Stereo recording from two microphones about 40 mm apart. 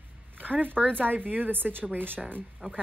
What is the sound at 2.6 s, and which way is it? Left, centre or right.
Speech, right.